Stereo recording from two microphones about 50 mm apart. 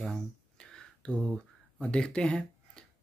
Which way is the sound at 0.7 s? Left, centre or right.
Centre.